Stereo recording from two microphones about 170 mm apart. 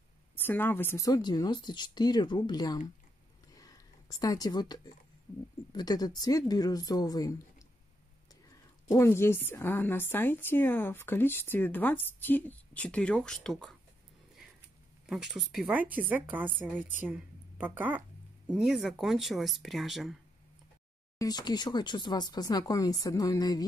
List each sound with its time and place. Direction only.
0.4 s speech: 10° left (ahead or behind)
3.5 s a sound: 20° left (ahead or behind)
5.7 s speech: 25° left (ahead or behind)
8.8 s a woman's voice: 15° left (ahead or behind)
15.0 s a woman's voice: 5° right (ahead or behind)
21.2 s speech: 25° left (ahead or behind)